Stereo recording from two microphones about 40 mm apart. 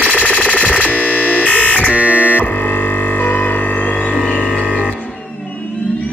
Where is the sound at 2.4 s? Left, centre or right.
Left.